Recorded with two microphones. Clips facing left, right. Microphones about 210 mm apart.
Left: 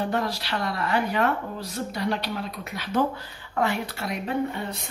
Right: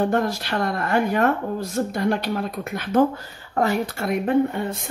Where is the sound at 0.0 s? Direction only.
50° right (ahead or behind).